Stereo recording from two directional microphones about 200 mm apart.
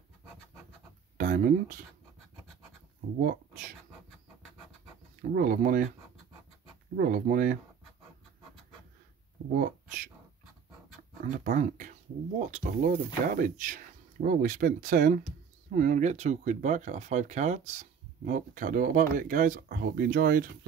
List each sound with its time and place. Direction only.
1.1 s a sound: 40° right (ahead or behind)
3.2 s speech: 45° right (ahead or behind)
5.3 s speech: 40° right (ahead or behind)
7.0 s speech: 45° right (ahead or behind)
11.2 s speech: 40° right (ahead or behind)